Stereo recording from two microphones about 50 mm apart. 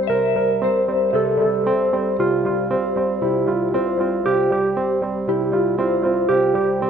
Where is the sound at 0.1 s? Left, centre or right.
Centre.